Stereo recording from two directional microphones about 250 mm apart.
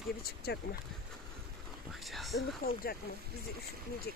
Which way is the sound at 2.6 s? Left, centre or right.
Left.